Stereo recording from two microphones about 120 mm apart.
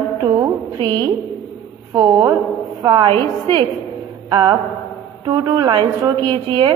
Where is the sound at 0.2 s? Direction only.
35° right (ahead or behind).